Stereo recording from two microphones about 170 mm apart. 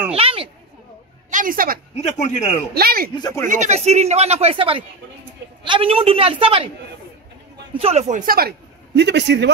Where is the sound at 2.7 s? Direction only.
65° right (ahead or behind).